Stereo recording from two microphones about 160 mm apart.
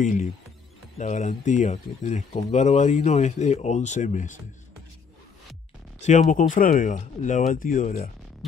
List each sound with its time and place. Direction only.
0.0 s speech: 50° left (ahead or behind)
6.0 s speech: 50° left (ahead or behind)